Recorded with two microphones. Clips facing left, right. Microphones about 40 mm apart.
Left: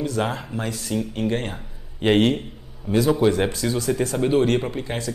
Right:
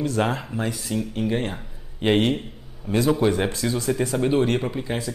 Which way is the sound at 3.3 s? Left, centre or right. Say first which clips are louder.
Left 2 dB; right.